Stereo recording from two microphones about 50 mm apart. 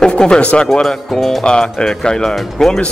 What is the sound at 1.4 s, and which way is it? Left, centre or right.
Speech, centre.